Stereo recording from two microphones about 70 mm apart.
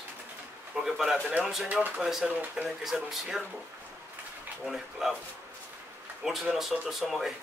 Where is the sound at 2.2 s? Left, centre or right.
Centre.